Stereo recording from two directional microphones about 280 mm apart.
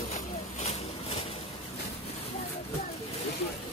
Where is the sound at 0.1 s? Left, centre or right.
Left.